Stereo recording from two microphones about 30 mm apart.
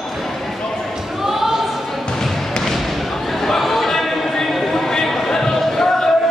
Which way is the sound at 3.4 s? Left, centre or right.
Centre.